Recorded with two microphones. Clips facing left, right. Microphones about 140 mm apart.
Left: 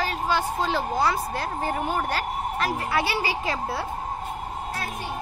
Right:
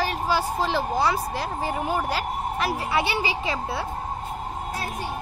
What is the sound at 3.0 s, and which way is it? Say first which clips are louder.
Speech: right 1 dB; 20° right (ahead or behind).